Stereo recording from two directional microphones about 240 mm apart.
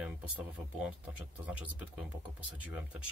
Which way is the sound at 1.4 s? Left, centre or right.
Centre.